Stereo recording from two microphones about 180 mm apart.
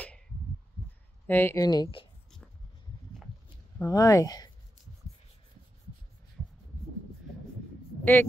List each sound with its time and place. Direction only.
1.2 s speech: 10° left (ahead or behind)
3.8 s speech: 20° left (ahead or behind)
8.0 s a woman's voice: 10° left (ahead or behind)